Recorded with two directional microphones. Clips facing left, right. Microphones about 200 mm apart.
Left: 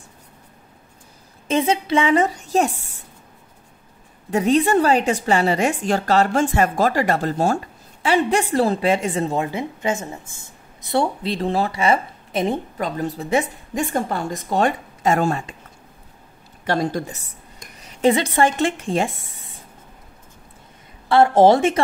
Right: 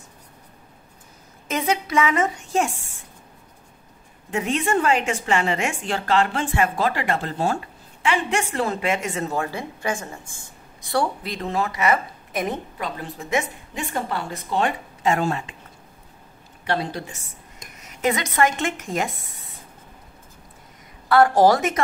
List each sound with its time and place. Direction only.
1.5 s a woman's voice: 30° left (ahead or behind)
4.3 s a woman's voice: 35° left (ahead or behind)
9.4 s speech: 20° left (ahead or behind)
12.7 s a woman's voice: 45° left (ahead or behind)
13.8 s a woman's voice: 45° left (ahead or behind)
16.6 s a woman's voice: 45° left (ahead or behind)
17.7 s speech: 30° left (ahead or behind)
21.1 s speech: 25° left (ahead or behind)